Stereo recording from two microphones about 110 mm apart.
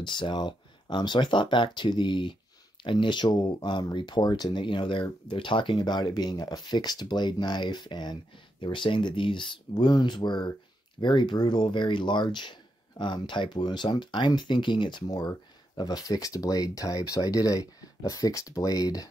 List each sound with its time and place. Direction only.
0.0 s speech: 45° left (ahead or behind)